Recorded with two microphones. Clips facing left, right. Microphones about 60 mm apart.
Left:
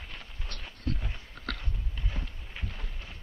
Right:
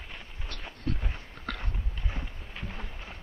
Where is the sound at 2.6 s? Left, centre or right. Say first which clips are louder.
Right 4 dB; right.